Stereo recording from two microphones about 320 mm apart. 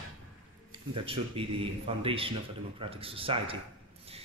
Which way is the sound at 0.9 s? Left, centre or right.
Centre.